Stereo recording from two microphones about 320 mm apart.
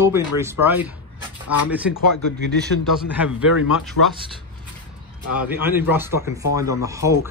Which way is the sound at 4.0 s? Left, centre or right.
Left.